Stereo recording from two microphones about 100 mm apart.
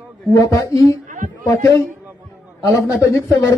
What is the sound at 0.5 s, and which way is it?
A man's voice, 35° left (ahead or behind).